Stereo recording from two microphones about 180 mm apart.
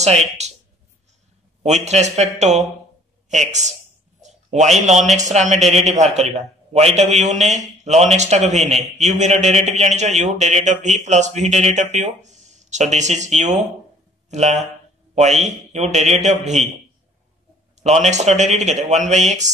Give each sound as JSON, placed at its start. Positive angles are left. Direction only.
{"t": 0.0, "sound": "speech", "side_deg": -35}
{"t": 1.6, "sound": "a man's voice", "side_deg": -40}
{"t": 4.2, "sound": "a sound", "side_deg": -40}
{"t": 5.1, "sound": "a man's voice", "side_deg": -40}
{"t": 5.6, "sound": "a man's voice", "side_deg": 0}
{"t": 5.9, "sound": "a man's voice", "side_deg": -40}
{"t": 17.8, "sound": "a man's voice", "side_deg": -40}